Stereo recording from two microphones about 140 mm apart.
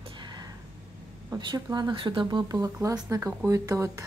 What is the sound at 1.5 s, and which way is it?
A woman's voice, 30° right (ahead or behind).